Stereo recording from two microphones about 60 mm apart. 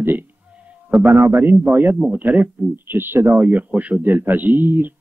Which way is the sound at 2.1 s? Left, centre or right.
Right.